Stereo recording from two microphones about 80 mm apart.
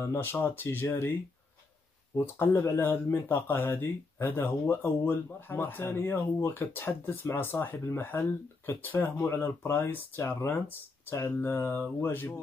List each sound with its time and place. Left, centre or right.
0.0 s speech: left
2.1 s speech: left